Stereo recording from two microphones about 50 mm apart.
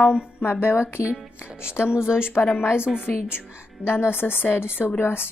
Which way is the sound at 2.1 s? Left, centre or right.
Left.